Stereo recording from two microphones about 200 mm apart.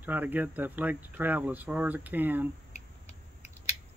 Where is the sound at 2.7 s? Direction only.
35° left (ahead or behind).